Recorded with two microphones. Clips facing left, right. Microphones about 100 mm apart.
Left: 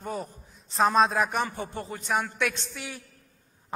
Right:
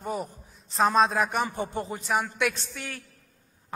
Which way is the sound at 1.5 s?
20° right (ahead or behind).